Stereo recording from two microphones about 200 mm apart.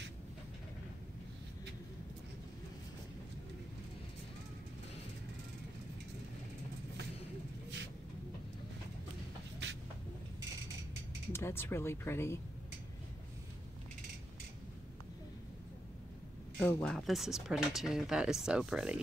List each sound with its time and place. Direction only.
9.6 s vehicle: 60° right (ahead or behind)
11.3 s speech: 10° left (ahead or behind)
16.5 s speech: 5° left (ahead or behind)